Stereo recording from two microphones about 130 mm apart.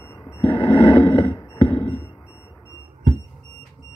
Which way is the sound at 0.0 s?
25° left (ahead or behind).